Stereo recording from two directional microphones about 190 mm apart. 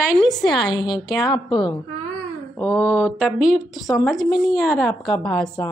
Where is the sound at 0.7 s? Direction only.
25° left (ahead or behind).